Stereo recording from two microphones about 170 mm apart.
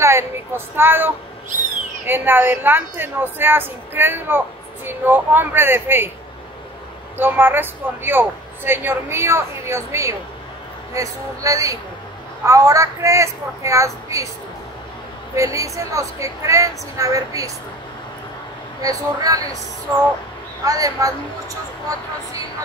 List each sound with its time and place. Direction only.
0.0 s a sound: 15° right (ahead or behind)
0.7 s speech: 10° right (ahead or behind)
7.2 s a woman's voice: 10° right (ahead or behind)
15.3 s a woman's voice: 20° right (ahead or behind)
18.8 s a woman's voice: 20° right (ahead or behind)
20.6 s a woman's voice: 20° right (ahead or behind)